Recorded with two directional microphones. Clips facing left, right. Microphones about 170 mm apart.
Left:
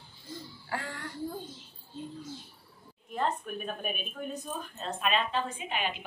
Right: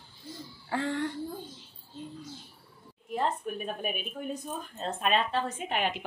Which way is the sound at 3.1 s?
15° right (ahead or behind).